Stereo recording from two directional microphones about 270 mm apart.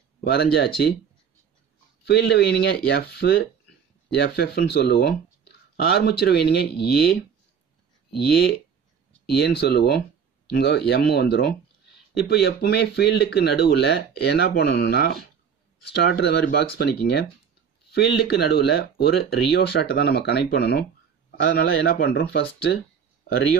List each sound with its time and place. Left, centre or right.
0.2 s speech: left
2.0 s speech: left
8.2 s speech: left